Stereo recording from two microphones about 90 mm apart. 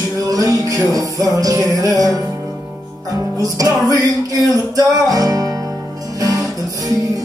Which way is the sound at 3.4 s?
40° right (ahead or behind).